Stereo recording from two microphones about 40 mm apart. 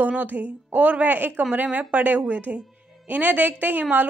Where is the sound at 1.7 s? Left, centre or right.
Right.